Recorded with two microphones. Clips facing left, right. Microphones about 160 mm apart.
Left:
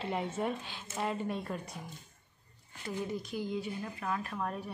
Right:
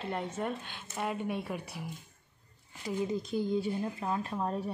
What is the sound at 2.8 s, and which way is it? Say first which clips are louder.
Speech: right 4 dB; 20° right (ahead or behind).